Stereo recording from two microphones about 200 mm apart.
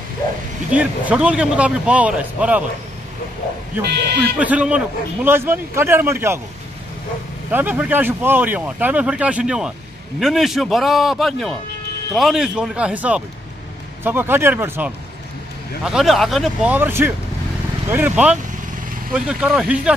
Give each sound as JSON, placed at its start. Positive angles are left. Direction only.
{"t": 0.7, "sound": "a man's voice", "side_deg": -5}
{"t": 4.4, "sound": "speech", "side_deg": -5}
{"t": 7.5, "sound": "a man's voice", "side_deg": -10}